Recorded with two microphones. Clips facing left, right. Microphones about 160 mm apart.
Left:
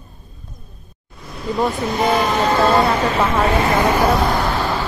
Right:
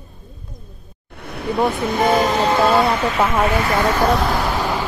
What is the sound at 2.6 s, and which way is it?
Speech, 5° right (ahead or behind).